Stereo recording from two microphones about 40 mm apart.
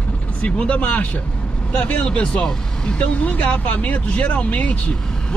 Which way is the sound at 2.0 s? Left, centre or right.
Left.